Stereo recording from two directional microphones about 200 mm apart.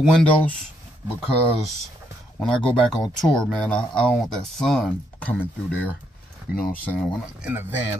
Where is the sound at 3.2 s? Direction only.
Centre (ahead or behind).